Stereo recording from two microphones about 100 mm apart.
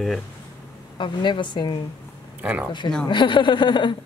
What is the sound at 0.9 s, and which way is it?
Speech, 50° left (ahead or behind).